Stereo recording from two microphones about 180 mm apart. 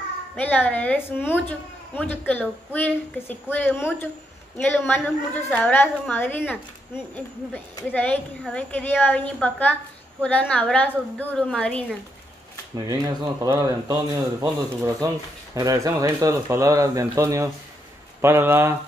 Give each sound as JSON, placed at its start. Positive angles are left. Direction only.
{"t": 0.4, "sound": "a woman's voice", "side_deg": 10}
{"t": 12.7, "sound": "speech", "side_deg": -20}